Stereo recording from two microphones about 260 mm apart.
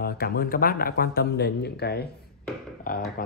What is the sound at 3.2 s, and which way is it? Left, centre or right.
Speech, left.